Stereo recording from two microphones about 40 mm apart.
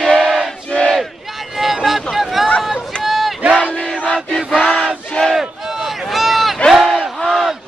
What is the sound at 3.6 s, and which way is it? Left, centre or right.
Battle cry, left.